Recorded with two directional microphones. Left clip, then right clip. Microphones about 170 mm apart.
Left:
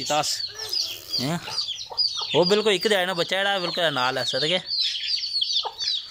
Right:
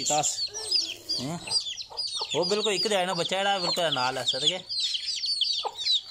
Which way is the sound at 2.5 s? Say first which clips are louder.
Left 5 dB; centre (ahead or behind).